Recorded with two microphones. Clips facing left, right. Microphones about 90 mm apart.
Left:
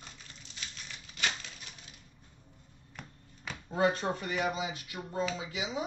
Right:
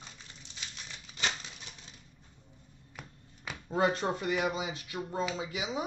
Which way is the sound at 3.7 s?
30° right (ahead or behind).